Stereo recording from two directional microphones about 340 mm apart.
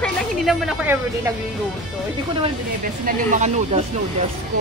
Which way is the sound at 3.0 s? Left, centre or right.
Right.